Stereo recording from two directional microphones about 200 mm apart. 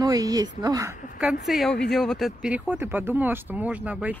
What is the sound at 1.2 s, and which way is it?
Speech, 5° right (ahead or behind).